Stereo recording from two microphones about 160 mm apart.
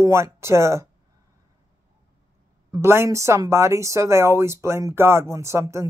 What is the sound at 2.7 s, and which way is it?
Speech, 15° right (ahead or behind).